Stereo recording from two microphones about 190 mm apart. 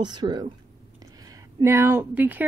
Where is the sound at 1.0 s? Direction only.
20° right (ahead or behind).